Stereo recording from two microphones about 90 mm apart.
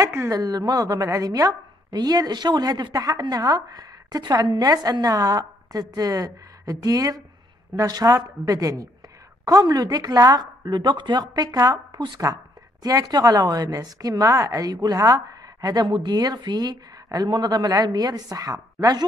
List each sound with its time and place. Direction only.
0.0 s a woman's voice: 35° right (ahead or behind)
12.8 s a woman's voice: 45° right (ahead or behind)